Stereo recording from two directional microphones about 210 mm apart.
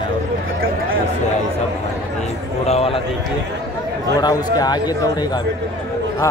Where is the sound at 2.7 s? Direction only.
25° left (ahead or behind).